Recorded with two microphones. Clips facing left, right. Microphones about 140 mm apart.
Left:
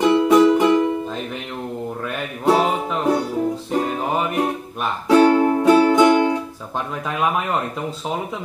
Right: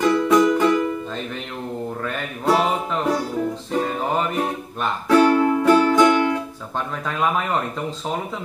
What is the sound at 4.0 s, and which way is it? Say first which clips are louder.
Music: left 1 dB; 5° left (ahead or behind).